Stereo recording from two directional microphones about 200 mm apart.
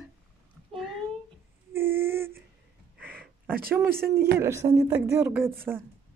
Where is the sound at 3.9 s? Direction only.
50° right (ahead or behind).